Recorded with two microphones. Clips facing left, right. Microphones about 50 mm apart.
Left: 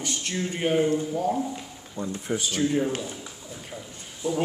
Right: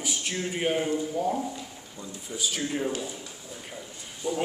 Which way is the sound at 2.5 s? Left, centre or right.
Centre.